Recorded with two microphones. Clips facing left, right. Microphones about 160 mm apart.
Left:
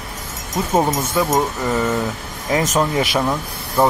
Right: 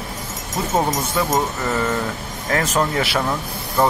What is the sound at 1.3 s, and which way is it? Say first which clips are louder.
Speech: left 2 dB; 10° left (ahead or behind).